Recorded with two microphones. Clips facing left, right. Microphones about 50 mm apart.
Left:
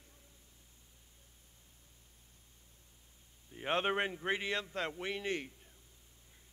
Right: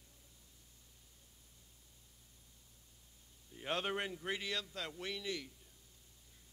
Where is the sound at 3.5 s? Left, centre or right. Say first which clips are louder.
Left 5 dB; left.